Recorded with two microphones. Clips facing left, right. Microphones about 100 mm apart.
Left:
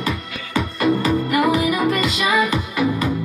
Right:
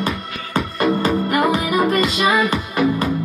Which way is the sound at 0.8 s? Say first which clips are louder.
Even; 35° right (ahead or behind).